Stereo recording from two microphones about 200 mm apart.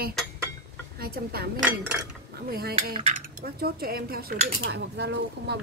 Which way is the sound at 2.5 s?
50° right (ahead or behind).